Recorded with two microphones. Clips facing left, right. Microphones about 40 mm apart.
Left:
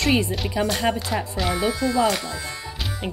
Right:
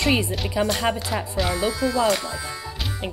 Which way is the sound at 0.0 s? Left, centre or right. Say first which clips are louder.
Left 1 dB; centre.